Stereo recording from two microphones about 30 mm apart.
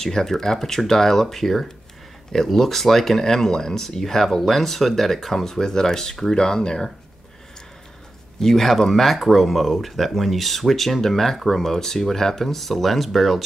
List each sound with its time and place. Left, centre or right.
0.0 s speech: centre
6.3 s speech: left
8.4 s speech: centre